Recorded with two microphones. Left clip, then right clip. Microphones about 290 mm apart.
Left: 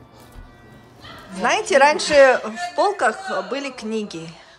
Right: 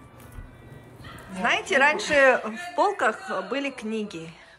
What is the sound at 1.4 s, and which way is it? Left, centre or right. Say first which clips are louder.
Speech: left 6 dB; centre.